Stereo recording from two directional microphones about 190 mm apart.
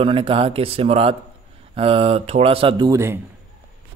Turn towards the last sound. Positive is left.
turn(degrees=-15)  # may be behind; listen again after turning